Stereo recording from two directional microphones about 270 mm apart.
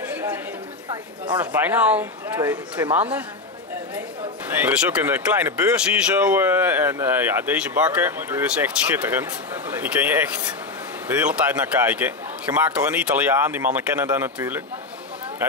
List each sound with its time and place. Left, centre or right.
0.0 s chatter: centre
0.8 s speech: centre
4.6 s speech: centre